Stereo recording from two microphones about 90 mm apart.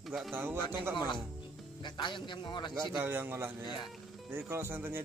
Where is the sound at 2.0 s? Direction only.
60° left (ahead or behind).